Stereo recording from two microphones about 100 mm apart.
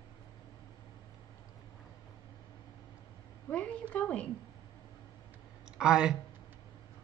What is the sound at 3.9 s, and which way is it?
Speech, 10° left (ahead or behind).